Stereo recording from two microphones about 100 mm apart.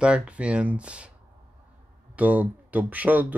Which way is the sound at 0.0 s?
10° right (ahead or behind).